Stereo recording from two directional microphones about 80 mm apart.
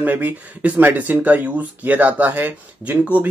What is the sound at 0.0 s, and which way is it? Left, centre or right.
Speech, right.